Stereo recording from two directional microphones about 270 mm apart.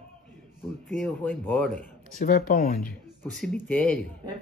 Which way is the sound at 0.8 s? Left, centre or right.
Centre.